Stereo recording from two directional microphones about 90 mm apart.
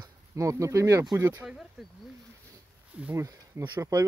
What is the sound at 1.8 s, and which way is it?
Speech, centre (ahead or behind).